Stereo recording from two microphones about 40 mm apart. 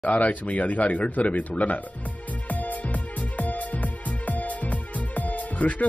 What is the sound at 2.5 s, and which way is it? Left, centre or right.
Music, left.